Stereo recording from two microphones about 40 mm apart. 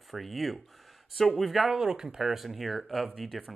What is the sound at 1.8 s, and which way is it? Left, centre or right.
Speech, centre.